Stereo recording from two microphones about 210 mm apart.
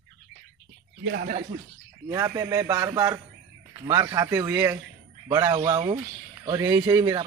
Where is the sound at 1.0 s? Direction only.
50° right (ahead or behind).